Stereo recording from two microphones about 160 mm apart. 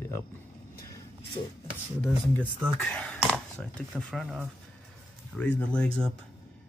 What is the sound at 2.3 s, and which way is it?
Speech, 10° left (ahead or behind).